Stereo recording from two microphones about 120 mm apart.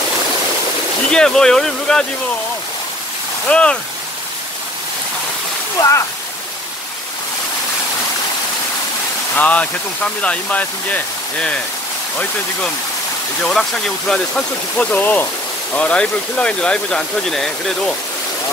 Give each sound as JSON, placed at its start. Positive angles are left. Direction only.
{"t": 1.1, "sound": "speech", "side_deg": 5}
{"t": 3.4, "sound": "speech", "side_deg": 10}
{"t": 5.8, "sound": "speech", "side_deg": 30}
{"t": 9.3, "sound": "speech", "side_deg": 10}
{"t": 13.4, "sound": "speech", "side_deg": 5}